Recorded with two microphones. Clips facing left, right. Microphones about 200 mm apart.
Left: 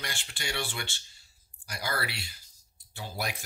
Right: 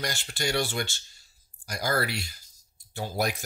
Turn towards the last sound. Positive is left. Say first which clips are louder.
# right 7 dB
turn(degrees=-45)  # may be behind; listen again after turning